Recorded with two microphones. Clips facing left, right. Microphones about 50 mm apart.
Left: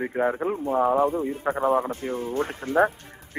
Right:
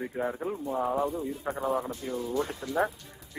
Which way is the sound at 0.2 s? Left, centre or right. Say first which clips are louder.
Left 8 dB; left.